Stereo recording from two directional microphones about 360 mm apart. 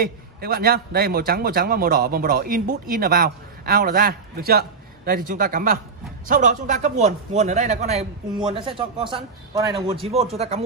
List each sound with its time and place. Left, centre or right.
0.0 s a man's voice: right